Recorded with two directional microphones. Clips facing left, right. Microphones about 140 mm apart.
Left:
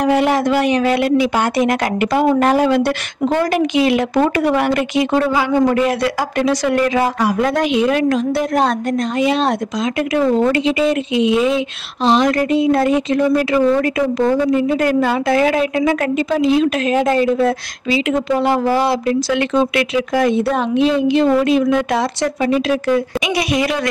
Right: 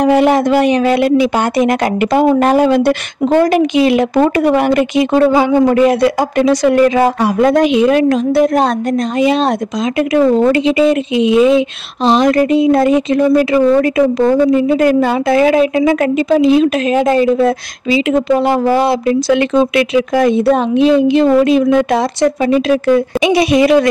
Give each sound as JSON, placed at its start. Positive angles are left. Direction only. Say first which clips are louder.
{"t": 0.0, "sound": "speech", "louder": "right 4 dB", "side_deg": -25}
{"t": 10.1, "sound": "speech", "louder": "right 5 dB", "side_deg": -20}
{"t": 18.5, "sound": "speech", "louder": "right 3 dB", "side_deg": -20}
{"t": 21.7, "sound": "speech", "louder": "right 5 dB", "side_deg": -25}